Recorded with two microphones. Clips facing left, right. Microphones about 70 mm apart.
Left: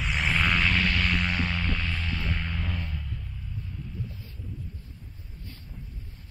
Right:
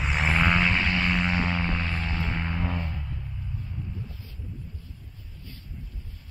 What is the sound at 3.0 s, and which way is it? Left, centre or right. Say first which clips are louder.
Music: right 2 dB; centre.